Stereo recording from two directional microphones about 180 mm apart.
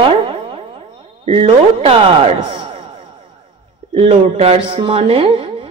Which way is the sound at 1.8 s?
30° right (ahead or behind).